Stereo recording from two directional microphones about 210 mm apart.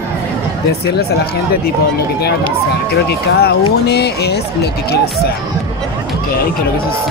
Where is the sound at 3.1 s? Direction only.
50° left (ahead or behind).